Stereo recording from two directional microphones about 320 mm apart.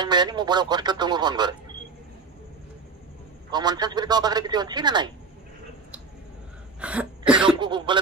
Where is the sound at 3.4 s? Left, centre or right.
Centre.